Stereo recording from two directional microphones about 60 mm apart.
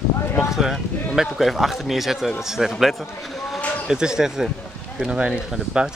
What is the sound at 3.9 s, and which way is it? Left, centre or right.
Speech, centre.